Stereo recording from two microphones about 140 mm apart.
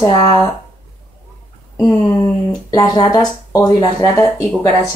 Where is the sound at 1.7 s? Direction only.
20° left (ahead or behind).